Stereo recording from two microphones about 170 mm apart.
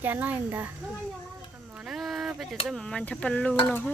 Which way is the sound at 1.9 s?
Centre (ahead or behind).